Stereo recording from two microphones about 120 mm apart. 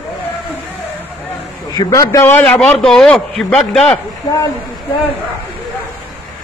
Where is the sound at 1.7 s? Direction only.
30° left (ahead or behind).